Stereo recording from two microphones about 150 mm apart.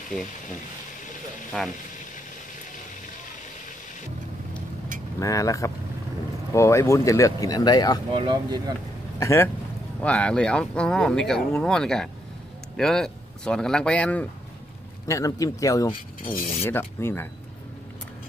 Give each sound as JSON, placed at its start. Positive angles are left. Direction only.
{"t": 0.1, "sound": "speech", "side_deg": 10}
{"t": 1.5, "sound": "speech", "side_deg": 5}
{"t": 5.2, "sound": "speech", "side_deg": 20}
{"t": 8.1, "sound": "speech", "side_deg": -30}
{"t": 9.2, "sound": "speech", "side_deg": 15}
{"t": 15.0, "sound": "speech", "side_deg": 20}